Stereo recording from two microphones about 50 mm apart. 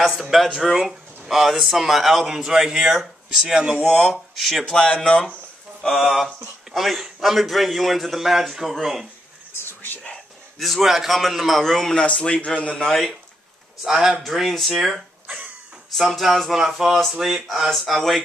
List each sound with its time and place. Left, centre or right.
0.0 s a man's voice: centre
3.8 s a man's voice: centre
4.6 s a man's voice: centre
9.5 s whispering: left
10.6 s a man's voice: centre
12.0 s a man's voice: left
12.8 s a man's voice: centre
13.8 s a man's voice: centre